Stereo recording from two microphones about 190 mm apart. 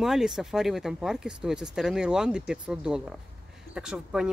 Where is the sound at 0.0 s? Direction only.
Centre (ahead or behind).